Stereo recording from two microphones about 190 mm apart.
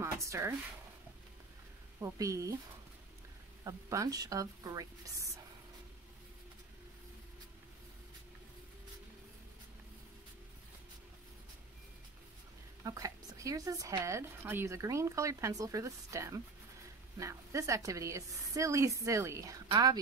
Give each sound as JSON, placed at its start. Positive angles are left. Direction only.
{"t": 0.0, "sound": "speech", "side_deg": -15}
{"t": 2.0, "sound": "speech", "side_deg": -15}
{"t": 3.6, "sound": "speech", "side_deg": -15}
{"t": 12.8, "sound": "speech", "side_deg": -20}